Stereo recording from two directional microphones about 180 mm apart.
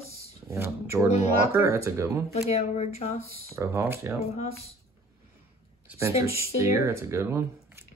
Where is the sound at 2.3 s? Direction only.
35° left (ahead or behind).